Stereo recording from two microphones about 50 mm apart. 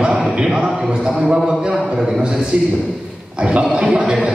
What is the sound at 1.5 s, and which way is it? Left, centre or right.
Speech, centre.